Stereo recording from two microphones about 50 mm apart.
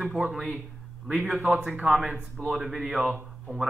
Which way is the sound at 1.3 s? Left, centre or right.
Centre.